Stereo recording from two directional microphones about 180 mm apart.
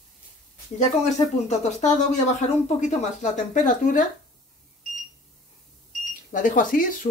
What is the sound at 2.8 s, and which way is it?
Speech, 40° left (ahead or behind).